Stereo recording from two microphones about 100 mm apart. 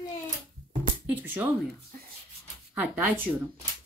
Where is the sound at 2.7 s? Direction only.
15° right (ahead or behind).